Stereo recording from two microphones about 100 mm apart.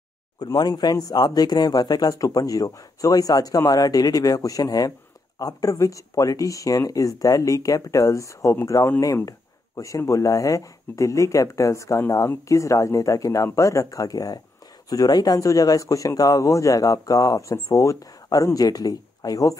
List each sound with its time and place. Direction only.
0.4 s speech: 45° left (ahead or behind)